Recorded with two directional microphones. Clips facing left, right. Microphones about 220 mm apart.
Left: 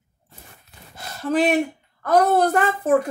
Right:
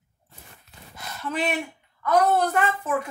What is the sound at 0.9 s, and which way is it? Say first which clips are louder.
A woman's voice: left 8 dB; 35° left (ahead or behind).